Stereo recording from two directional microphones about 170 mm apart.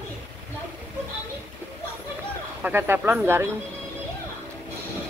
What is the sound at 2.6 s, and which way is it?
Speech, 10° right (ahead or behind).